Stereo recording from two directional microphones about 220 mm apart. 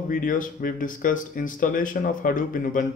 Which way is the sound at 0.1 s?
40° left (ahead or behind).